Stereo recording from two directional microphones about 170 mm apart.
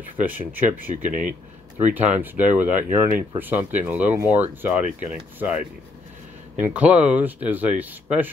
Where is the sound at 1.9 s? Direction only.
10° right (ahead or behind).